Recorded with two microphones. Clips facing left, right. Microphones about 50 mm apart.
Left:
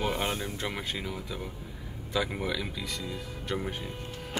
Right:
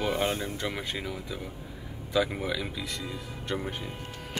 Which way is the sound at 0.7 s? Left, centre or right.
Centre.